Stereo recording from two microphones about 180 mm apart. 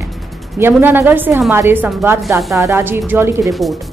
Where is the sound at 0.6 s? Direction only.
10° right (ahead or behind).